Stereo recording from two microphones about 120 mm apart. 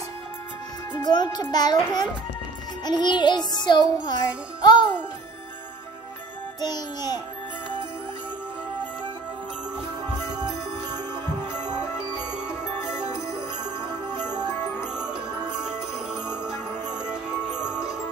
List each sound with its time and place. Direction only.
0.9 s a child's voice: 35° left (ahead or behind)
6.6 s a child's voice: 35° left (ahead or behind)
15.6 s music: 5° right (ahead or behind)